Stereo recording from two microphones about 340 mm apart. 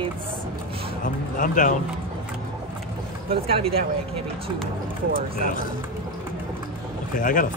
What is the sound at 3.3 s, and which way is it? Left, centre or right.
Speech, centre.